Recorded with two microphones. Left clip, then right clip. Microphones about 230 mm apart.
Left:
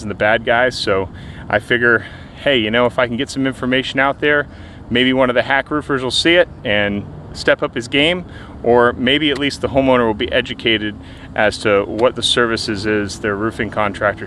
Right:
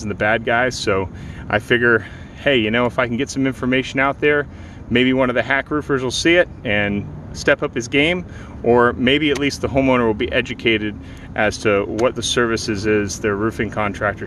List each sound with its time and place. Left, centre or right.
0.0 s speech: centre